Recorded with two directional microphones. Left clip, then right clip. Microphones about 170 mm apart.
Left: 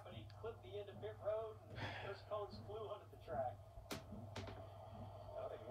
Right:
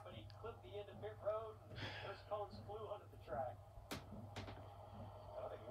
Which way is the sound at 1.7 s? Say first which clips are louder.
Left 1 dB; 35° left (ahead or behind).